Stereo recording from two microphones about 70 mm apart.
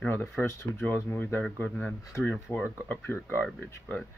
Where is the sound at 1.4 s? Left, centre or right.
Left.